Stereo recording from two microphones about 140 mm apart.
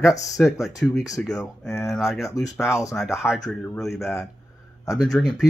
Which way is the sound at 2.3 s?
25° left (ahead or behind).